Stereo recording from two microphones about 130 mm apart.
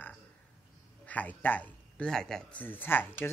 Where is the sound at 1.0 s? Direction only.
10° left (ahead or behind).